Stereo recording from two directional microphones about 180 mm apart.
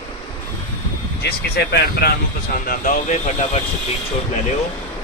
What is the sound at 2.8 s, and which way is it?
Speech, 45° left (ahead or behind).